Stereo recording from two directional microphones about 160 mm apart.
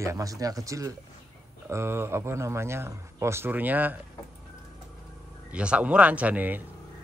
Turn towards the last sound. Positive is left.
turn(degrees=-10)  # may be behind; listen again after turning